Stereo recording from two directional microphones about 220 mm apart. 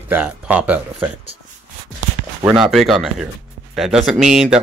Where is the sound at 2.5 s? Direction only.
Centre (ahead or behind).